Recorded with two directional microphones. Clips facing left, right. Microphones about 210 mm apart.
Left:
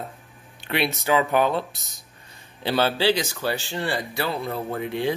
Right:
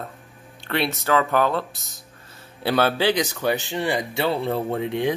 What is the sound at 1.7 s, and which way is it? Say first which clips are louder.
Speech: right 3 dB; centre (ahead or behind).